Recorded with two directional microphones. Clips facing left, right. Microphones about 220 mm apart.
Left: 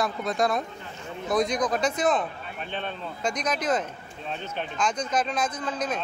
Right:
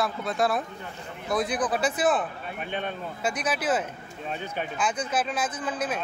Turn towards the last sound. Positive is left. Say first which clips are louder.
# even
turn(degrees=-5)  # may be behind; listen again after turning